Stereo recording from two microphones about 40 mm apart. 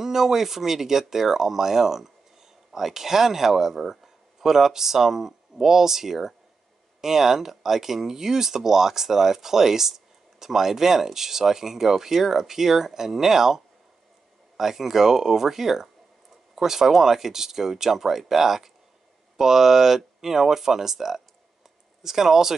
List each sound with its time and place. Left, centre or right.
0.0 s speech: centre
14.6 s speech: centre